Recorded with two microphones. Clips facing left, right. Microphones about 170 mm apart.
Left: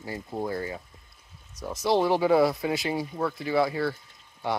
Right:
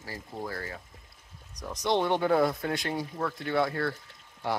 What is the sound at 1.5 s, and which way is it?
Speech, 5° left (ahead or behind).